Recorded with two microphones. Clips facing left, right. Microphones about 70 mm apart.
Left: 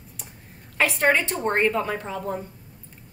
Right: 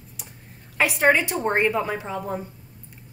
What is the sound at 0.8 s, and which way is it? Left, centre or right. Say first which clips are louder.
A woman's voice: right 2 dB; centre.